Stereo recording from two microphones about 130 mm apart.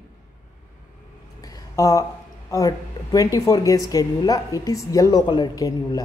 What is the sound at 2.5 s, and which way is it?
Speech, 25° left (ahead or behind).